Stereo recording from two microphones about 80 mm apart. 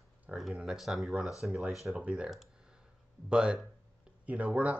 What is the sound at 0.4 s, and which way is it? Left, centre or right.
Speech, centre.